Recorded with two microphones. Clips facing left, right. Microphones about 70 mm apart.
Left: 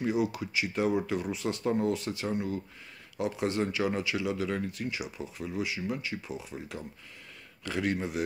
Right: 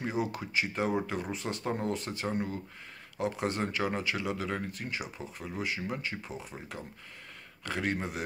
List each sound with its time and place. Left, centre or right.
0.0 s speech: right
7.6 s speech: right